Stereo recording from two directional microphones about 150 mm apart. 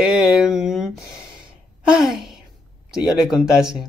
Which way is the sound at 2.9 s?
5° right (ahead or behind).